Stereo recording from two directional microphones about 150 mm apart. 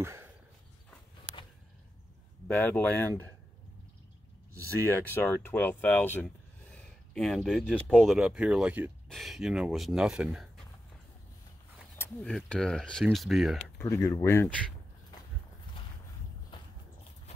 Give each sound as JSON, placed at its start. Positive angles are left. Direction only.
{"t": 0.0, "sound": "a sound", "side_deg": -15}
{"t": 2.4, "sound": "speech", "side_deg": 10}
{"t": 5.1, "sound": "speech", "side_deg": 15}
{"t": 6.2, "sound": "a sound", "side_deg": 5}
{"t": 7.7, "sound": "speech", "side_deg": 5}
{"t": 8.2, "sound": "speech", "side_deg": -5}
{"t": 12.0, "sound": "speech", "side_deg": 5}
{"t": 13.7, "sound": "speech", "side_deg": 20}